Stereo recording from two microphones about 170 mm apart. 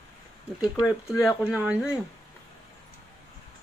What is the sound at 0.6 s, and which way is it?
Speech, 5° right (ahead or behind).